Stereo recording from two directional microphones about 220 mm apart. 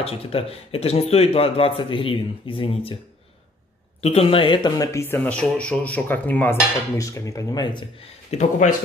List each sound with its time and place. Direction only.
0.0 s speech: 25° left (ahead or behind)
4.0 s speech: 25° left (ahead or behind)
8.3 s speech: 35° left (ahead or behind)